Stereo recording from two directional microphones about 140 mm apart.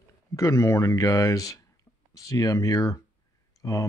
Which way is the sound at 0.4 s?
25° left (ahead or behind).